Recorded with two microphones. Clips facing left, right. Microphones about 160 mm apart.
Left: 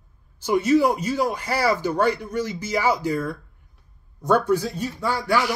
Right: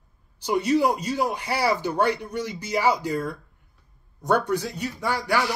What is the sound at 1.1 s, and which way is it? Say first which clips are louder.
Speech: left 2 dB; 55° left (ahead or behind).